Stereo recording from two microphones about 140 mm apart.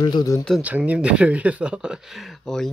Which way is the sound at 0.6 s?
10° right (ahead or behind).